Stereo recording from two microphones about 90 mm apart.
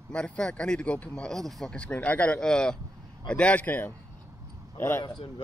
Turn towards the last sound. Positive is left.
turn(degrees=25)  # may be behind; listen again after turning